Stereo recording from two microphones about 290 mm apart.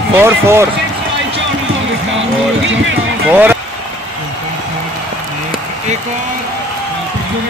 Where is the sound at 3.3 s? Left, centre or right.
Centre.